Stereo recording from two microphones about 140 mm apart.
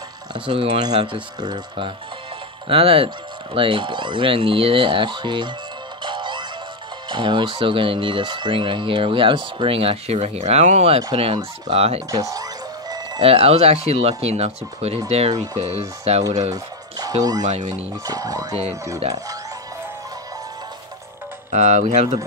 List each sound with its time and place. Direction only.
0.3 s speech: 35° right (ahead or behind)
6.0 s music: 35° right (ahead or behind)
7.1 s speech: 35° right (ahead or behind)
12.1 s music: 25° right (ahead or behind)
13.2 s speech: 45° right (ahead or behind)
16.5 s music: 25° right (ahead or behind)
17.5 s speech: 55° right (ahead or behind)
18.0 s music: 25° right (ahead or behind)
18.5 s speech: 50° right (ahead or behind)
21.5 s speech: 60° right (ahead or behind)